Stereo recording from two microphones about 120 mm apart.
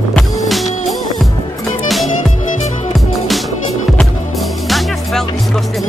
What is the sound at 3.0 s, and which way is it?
Music, centre (ahead or behind).